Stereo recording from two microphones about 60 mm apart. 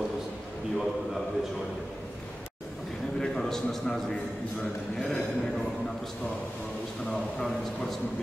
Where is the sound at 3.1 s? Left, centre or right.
Centre.